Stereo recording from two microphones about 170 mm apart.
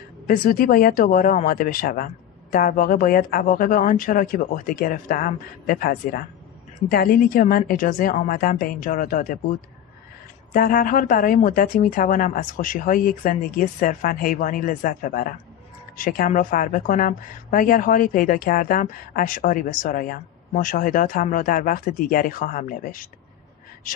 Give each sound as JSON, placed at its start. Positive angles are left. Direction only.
{"t": 0.3, "sound": "speech", "side_deg": 55}
{"t": 10.5, "sound": "a woman's voice", "side_deg": 55}